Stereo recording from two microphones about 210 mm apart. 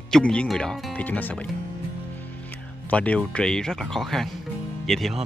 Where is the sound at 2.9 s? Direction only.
5° left (ahead or behind).